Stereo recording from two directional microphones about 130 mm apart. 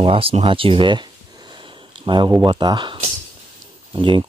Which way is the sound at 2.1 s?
40° right (ahead or behind).